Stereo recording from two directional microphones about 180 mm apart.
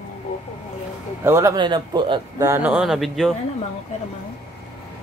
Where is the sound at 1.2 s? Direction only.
15° right (ahead or behind); by 3.3 s centre (ahead or behind).